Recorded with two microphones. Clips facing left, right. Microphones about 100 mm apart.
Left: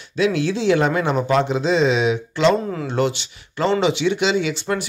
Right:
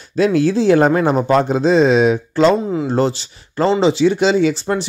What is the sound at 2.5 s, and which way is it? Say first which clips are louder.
Speech: right 4 dB; 20° right (ahead or behind).